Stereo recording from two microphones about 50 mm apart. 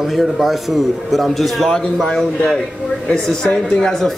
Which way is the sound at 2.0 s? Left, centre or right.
Centre.